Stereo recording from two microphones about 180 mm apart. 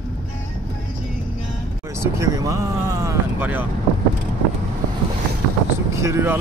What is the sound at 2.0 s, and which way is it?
Speech, 15° right (ahead or behind).